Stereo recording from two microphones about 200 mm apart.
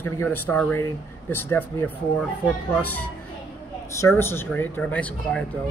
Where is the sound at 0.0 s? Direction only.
10° left (ahead or behind).